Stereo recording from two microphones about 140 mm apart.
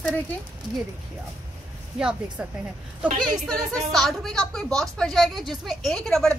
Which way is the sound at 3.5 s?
Centre (ahead or behind).